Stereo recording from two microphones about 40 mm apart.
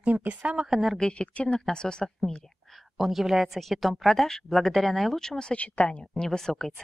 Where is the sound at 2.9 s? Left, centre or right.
Centre.